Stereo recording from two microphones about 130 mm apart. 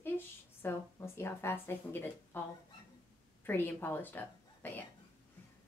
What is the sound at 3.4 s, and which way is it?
A woman's voice, 15° left (ahead or behind).